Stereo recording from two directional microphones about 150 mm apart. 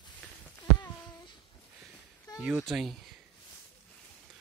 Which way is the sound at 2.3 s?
25° left (ahead or behind).